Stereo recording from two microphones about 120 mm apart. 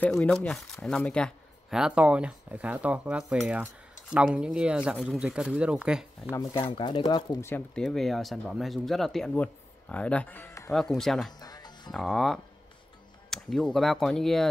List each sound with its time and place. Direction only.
0.1 s speech: 10° left (ahead or behind)
1.7 s speech: 5° right (ahead or behind)
6.5 s speech: 45° left (ahead or behind)
7.7 s speech: 5° left (ahead or behind); by 10.7 s 20° left (ahead or behind)
10.7 s speech: 5° left (ahead or behind)
11.3 s music: 35° left (ahead or behind)
11.9 s speech: 5° left (ahead or behind)